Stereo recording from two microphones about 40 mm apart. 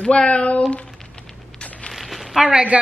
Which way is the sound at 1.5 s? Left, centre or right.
Left.